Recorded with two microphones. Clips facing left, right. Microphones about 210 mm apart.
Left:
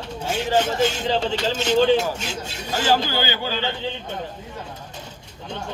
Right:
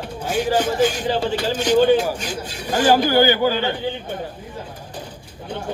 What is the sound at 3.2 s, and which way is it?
Speech, 45° right (ahead or behind).